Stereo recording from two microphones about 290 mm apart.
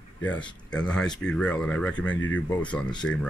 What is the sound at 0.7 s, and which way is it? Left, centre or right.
Speech, centre.